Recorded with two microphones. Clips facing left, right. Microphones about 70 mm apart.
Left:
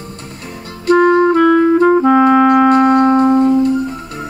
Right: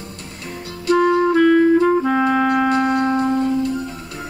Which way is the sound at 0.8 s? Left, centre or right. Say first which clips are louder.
Left 5 dB; left.